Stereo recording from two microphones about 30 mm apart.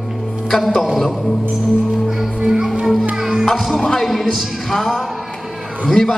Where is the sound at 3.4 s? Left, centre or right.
Centre.